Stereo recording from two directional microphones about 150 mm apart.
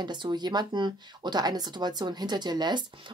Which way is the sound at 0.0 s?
30° right (ahead or behind).